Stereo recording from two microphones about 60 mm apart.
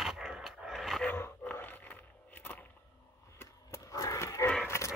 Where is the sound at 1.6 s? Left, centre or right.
Left.